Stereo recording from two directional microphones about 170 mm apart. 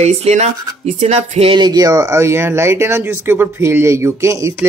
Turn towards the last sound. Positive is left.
turn(degrees=-15)  # may be behind; listen again after turning